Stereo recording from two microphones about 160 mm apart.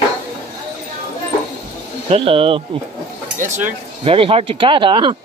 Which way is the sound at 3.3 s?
45° right (ahead or behind).